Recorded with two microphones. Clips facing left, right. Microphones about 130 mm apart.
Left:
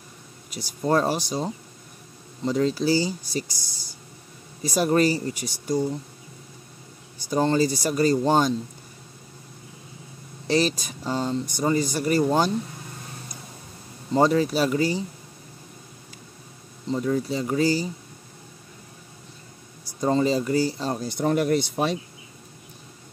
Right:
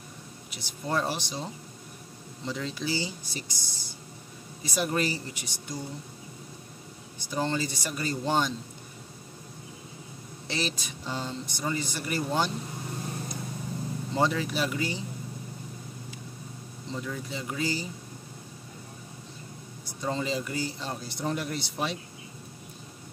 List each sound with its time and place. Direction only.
0.5 s speech: 45° left (ahead or behind)
7.2 s speech: 40° left (ahead or behind)
10.5 s speech: 40° left (ahead or behind)
14.1 s speech: 40° left (ahead or behind)
16.9 s speech: 40° left (ahead or behind)
20.0 s speech: 40° left (ahead or behind)
21.2 s speech: 55° left (ahead or behind)